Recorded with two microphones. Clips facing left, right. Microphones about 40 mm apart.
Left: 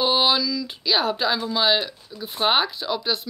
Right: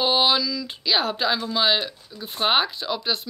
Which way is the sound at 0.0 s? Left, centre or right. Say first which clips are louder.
Even; centre.